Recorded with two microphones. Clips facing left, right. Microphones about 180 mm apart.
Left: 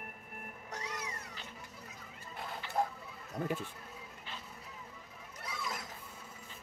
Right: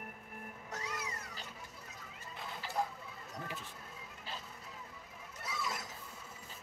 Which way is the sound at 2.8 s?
50° left (ahead or behind).